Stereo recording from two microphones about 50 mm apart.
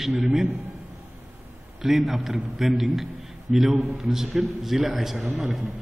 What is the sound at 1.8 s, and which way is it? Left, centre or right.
A man's voice, centre.